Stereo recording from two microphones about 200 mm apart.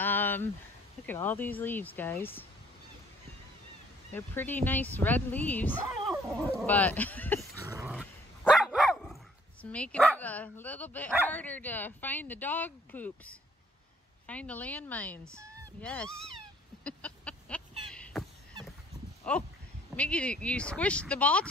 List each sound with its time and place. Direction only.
0.0 s a sound: 10° left (ahead or behind)
1.0 s speech: 10° left (ahead or behind)
4.1 s speech: 10° left (ahead or behind)
7.6 s dog: 15° right (ahead or behind)
7.9 s speech: 5° right (ahead or behind)
14.2 s speech: 5° left (ahead or behind)
15.2 s fowl: 15° right (ahead or behind)
15.8 s speech: 5° left (ahead or behind)
16.8 s a sound: 5° left (ahead or behind)
19.2 s speech: 5° left (ahead or behind)